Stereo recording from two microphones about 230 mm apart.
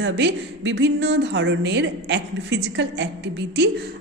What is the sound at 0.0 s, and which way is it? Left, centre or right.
A woman's voice, right.